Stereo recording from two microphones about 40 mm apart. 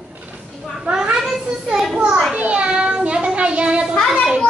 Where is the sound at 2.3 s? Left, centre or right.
Right.